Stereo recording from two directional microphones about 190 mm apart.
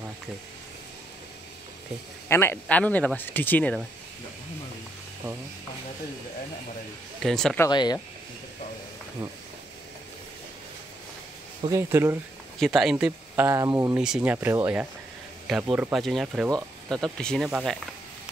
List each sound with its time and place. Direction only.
2.2 s speech: 10° left (ahead or behind)
7.2 s speech: centre (ahead or behind)
7.6 s speech: 20° left (ahead or behind)
11.7 s speech: 15° right (ahead or behind)
12.5 s speech: centre (ahead or behind)